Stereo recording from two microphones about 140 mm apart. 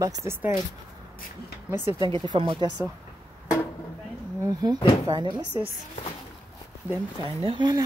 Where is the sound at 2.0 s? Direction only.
35° right (ahead or behind).